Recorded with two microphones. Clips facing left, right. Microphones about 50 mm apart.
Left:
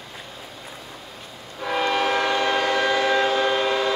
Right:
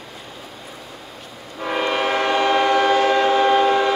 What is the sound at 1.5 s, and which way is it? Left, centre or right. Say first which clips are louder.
Train: right 1 dB; right.